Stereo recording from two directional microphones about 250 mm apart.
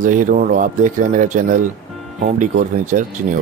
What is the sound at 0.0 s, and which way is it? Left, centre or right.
Speech, right.